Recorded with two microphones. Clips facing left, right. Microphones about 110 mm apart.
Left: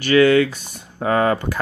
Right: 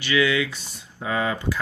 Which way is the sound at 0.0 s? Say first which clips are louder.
Left 8 dB; 45° left (ahead or behind).